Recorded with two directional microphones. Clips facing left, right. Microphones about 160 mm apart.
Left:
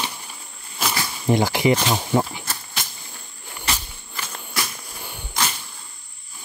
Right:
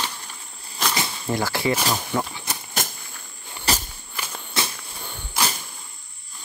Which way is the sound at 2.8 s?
45° right (ahead or behind).